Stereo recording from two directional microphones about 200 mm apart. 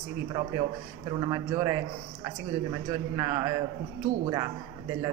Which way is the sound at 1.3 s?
15° right (ahead or behind).